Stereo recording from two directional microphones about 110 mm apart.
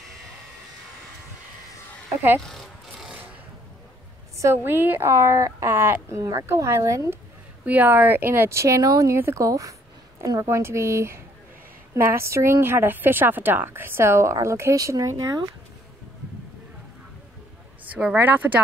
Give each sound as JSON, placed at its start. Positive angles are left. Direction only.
{"t": 2.4, "sound": "a sound", "side_deg": 0}
{"t": 4.4, "sound": "a woman's voice", "side_deg": -20}
{"t": 7.6, "sound": "a woman's voice", "side_deg": -15}
{"t": 17.8, "sound": "speech", "side_deg": -10}